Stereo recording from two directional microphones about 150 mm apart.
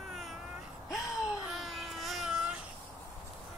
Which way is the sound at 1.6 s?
Centre (ahead or behind).